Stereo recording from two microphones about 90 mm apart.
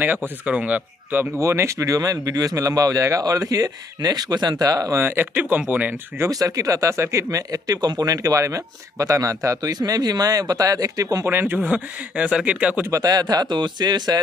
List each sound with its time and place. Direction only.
0.0 s speech: 20° right (ahead or behind)
1.4 s speech: 30° right (ahead or behind)
5.0 s speech: 20° right (ahead or behind)
6.2 s speech: 40° right (ahead or behind)
11.2 s speech: 20° right (ahead or behind)
12.9 s speech: 45° right (ahead or behind)